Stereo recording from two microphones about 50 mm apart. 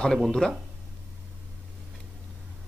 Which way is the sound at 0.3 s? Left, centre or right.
Centre.